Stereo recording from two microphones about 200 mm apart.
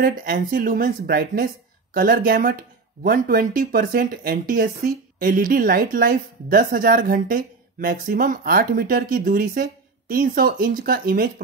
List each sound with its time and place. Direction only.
0.0 s speech: 45° right (ahead or behind)